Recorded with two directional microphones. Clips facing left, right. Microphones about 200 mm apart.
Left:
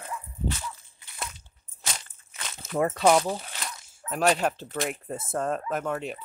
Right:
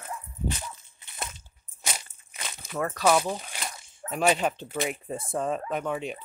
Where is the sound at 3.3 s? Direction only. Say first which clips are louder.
Left 1 dB; 15° right (ahead or behind).